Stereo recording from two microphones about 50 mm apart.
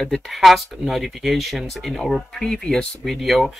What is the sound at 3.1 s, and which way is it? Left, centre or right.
Speech, centre.